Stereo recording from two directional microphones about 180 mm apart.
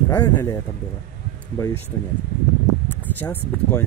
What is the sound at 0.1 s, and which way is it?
Speech, 15° left (ahead or behind).